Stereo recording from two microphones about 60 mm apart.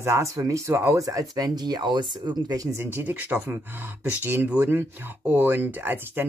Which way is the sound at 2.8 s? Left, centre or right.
Right.